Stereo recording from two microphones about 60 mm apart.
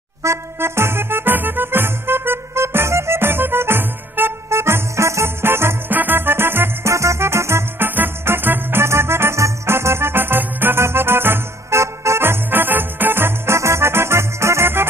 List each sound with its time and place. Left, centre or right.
0.2 s music: right
6.9 s music: right
7.9 s music: right
13.6 s music: right